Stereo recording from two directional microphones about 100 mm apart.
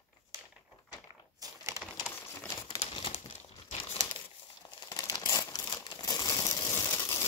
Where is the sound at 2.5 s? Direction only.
40° left (ahead or behind).